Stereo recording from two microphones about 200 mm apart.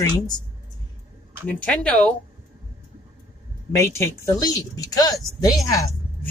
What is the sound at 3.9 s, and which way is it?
Speech, 15° left (ahead or behind).